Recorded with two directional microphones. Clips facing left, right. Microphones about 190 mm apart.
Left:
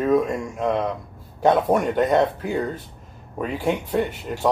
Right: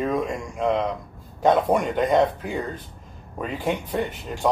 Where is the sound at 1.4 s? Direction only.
5° left (ahead or behind).